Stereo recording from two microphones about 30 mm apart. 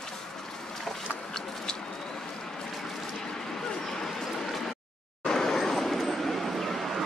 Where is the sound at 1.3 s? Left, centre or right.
Left.